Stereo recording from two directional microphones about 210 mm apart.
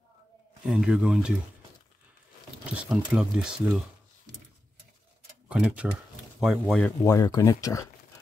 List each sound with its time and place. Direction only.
0.7 s speech: 5° right (ahead or behind)
2.6 s speech: 5° right (ahead or behind)
5.5 s speech: 5° right (ahead or behind)
6.6 s speech: 5° left (ahead or behind)
7.2 s speech: 15° left (ahead or behind)